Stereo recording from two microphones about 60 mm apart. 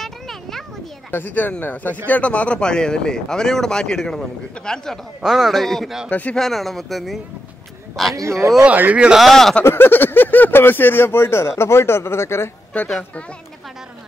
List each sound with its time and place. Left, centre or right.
0.0 s a sound: centre
1.1 s speech: left
5.2 s speech: centre
6.0 s speech: left
6.3 s speech: centre
8.2 s speech: right
8.6 s speech: right
9.1 s speech: centre
9.7 s speech: left
12.7 s speech: left